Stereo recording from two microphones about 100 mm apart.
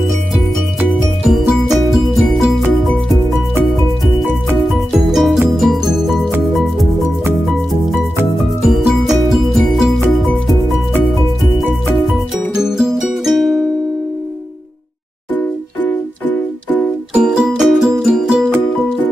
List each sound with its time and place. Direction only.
1.2 s music: centre (ahead or behind)
3.6 s music: centre (ahead or behind)
8.6 s music: 5° right (ahead or behind)
11.9 s music: centre (ahead or behind)
15.3 s music: 15° left (ahead or behind)
17.1 s music: 5° right (ahead or behind)